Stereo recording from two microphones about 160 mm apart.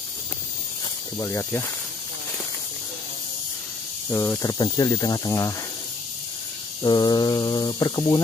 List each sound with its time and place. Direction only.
1.1 s speech: 15° left (ahead or behind)
4.1 s speech: 15° left (ahead or behind)
6.8 s speech: 25° left (ahead or behind)